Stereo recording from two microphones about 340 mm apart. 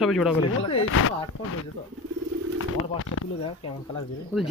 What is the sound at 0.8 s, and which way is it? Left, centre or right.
Speech, left.